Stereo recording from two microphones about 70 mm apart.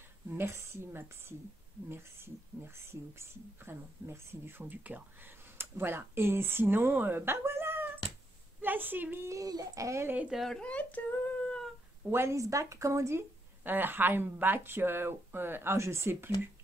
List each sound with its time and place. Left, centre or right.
0.3 s a woman's voice: right
9.3 s speech: right
10.3 s speech: centre
10.6 s speech: centre
12.1 s speech: right
13.7 s speech: right